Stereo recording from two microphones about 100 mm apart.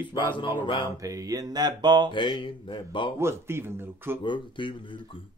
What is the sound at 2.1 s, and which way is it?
Speech, 55° left (ahead or behind).